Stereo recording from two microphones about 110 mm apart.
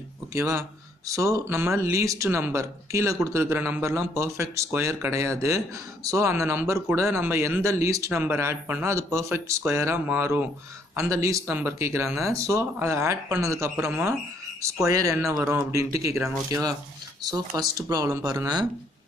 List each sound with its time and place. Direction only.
0.3 s speech: 25° right (ahead or behind)
15.3 s speech: 5° right (ahead or behind)
15.7 s speech: 30° right (ahead or behind)